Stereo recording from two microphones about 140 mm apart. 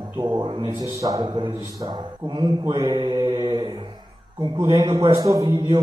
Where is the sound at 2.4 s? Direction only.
30° right (ahead or behind).